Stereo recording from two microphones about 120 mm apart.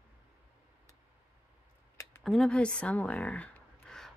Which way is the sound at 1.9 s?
20° left (ahead or behind).